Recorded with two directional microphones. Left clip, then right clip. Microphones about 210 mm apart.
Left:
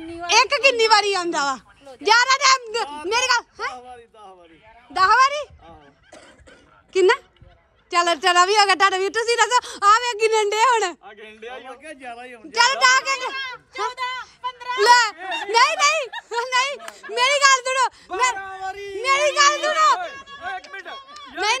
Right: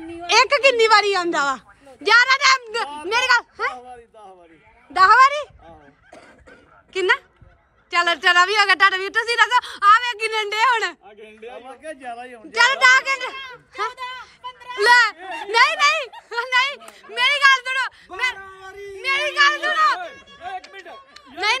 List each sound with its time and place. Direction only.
0.3 s a woman's voice: 15° left (ahead or behind)
3.8 s speech: centre (ahead or behind)
4.9 s speech: 15° left (ahead or behind)
6.9 s a woman's voice: 25° left (ahead or behind)
11.1 s speech: 5° left (ahead or behind)
11.7 s a man's voice: 15° right (ahead or behind)
12.4 s speech: 15° left (ahead or behind)
13.9 s speech: centre (ahead or behind)
14.8 s a woman's voice: 20° left (ahead or behind)
15.1 s speech: centre (ahead or behind)
15.5 s a woman's voice: 20° left (ahead or behind)
20.0 s speech: centre (ahead or behind)
21.5 s a woman's voice: 20° left (ahead or behind)